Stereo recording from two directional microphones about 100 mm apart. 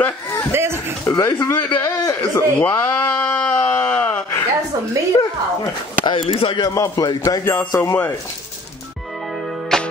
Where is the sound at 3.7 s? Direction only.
20° left (ahead or behind).